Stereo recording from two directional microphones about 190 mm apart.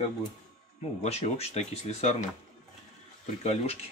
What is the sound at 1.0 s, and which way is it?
Speech, 35° left (ahead or behind).